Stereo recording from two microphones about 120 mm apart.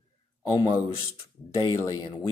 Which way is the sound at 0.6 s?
40° left (ahead or behind).